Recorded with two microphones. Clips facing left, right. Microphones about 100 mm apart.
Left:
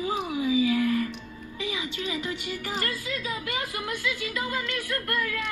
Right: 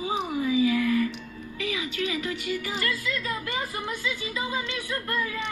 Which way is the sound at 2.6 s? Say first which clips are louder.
Right 1 dB; 50° left (ahead or behind).